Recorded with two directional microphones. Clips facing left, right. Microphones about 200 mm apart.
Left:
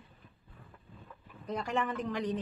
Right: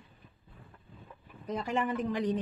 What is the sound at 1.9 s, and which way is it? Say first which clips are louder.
Speech: right 3 dB; 10° right (ahead or behind).